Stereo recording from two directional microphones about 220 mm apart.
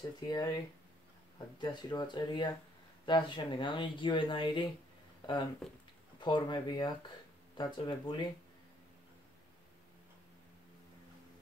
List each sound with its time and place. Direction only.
0.3 s speech: 15° left (ahead or behind)
1.6 s speech: 20° left (ahead or behind)